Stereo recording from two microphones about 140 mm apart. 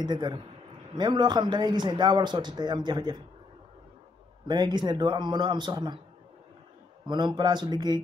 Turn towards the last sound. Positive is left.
turn(degrees=-30)  # may be behind; listen again after turning